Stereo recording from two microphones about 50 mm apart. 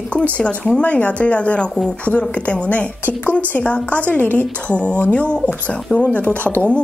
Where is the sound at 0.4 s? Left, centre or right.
Left.